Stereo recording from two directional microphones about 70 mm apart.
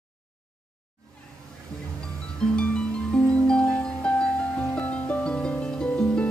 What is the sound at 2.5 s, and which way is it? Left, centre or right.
Music, centre.